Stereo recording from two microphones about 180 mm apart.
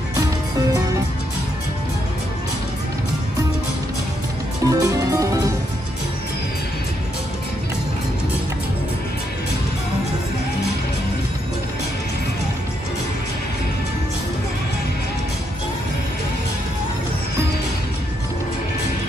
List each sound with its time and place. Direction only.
4.6 s music: 20° right (ahead or behind)